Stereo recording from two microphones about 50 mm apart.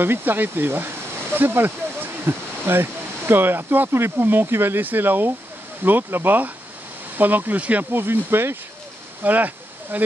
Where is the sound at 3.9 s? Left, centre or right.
Right.